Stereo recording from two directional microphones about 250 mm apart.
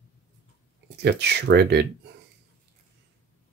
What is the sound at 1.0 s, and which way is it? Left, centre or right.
Speech, right.